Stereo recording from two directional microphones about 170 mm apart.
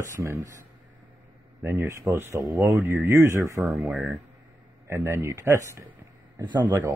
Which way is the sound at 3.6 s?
5° right (ahead or behind).